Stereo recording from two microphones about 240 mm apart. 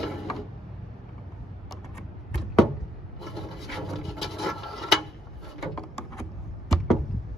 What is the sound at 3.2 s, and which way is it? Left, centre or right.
Rub, centre.